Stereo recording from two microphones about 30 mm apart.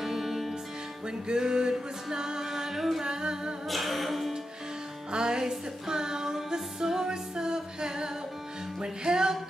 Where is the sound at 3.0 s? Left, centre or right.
Right.